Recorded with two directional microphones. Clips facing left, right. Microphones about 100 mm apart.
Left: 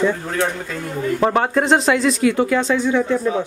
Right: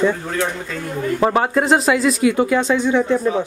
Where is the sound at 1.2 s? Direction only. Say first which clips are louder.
Right 1 dB; 5° right (ahead or behind).